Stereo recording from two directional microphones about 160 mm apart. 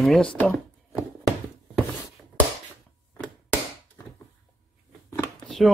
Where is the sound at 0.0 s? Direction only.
5° left (ahead or behind).